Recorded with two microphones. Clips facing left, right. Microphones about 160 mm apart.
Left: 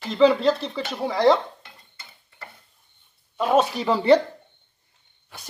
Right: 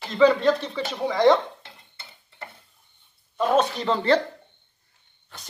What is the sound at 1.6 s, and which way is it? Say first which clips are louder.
Stir: right 1 dB; 30° right (ahead or behind).